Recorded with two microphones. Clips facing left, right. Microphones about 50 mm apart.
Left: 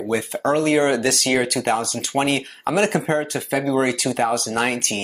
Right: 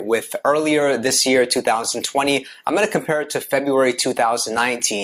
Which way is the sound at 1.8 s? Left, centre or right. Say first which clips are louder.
Right 1 dB; right.